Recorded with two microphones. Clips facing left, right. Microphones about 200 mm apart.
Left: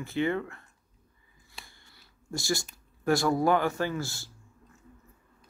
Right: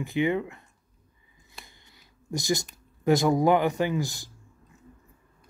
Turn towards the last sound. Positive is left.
turn(degrees=-15)  # may be behind; listen again after turning